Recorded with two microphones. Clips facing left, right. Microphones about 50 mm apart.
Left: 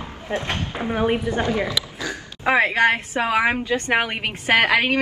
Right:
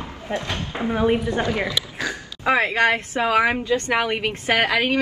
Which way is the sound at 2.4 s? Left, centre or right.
Left.